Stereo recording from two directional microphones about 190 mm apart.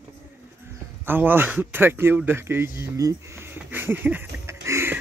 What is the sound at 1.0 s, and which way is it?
A man's voice, 10° right (ahead or behind).